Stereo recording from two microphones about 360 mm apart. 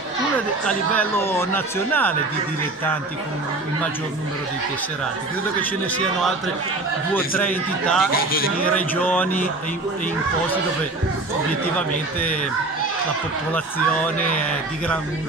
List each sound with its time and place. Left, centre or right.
0.7 s speech: centre
5.6 s speech: centre
8.1 s a man's voice: left
8.6 s speech: centre